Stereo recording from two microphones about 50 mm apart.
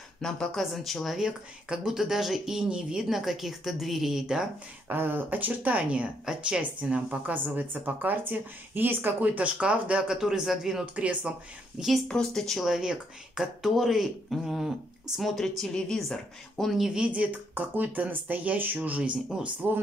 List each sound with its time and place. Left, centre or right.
0.2 s speech: centre
1.1 s speech: centre
4.8 s speech: right
7.3 s speech: right; by 10.9 s centre
11.0 s speech: right
12.1 s speech: centre
12.6 s speech: centre
17.1 s speech: right